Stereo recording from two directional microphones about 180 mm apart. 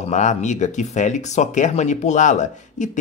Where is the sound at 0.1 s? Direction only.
40° left (ahead or behind).